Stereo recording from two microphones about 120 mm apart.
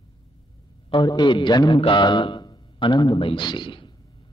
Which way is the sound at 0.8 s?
40° left (ahead or behind).